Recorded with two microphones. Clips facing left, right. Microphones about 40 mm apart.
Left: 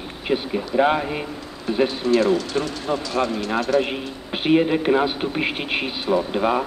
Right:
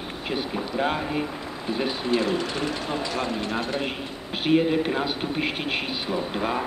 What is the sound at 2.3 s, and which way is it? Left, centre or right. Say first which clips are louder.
Speech: left 5 dB; right.